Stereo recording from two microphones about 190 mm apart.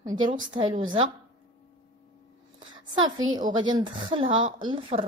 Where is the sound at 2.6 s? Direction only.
25° right (ahead or behind).